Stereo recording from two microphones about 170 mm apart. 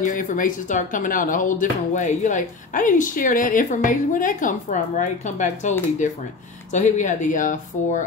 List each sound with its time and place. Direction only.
0.0 s speech: 50° left (ahead or behind)